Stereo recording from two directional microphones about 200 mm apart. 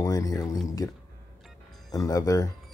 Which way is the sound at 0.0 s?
20° left (ahead or behind).